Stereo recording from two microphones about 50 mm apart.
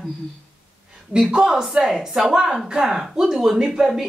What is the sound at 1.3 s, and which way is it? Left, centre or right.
A woman's voice, centre.